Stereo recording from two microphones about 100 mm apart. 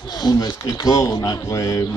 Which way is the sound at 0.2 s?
40° left (ahead or behind).